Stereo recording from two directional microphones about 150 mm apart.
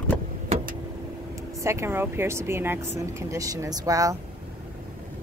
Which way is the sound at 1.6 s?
15° right (ahead or behind).